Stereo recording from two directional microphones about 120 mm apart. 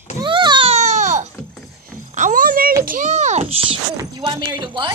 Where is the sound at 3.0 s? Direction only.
80° right; by 3.8 s 55° right (ahead or behind).